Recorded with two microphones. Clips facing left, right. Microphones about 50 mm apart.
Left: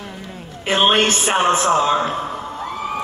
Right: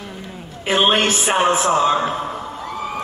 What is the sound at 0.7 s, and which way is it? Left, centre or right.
A man's voice, centre.